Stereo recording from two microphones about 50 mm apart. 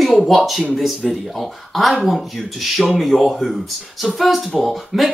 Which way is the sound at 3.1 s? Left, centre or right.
Centre.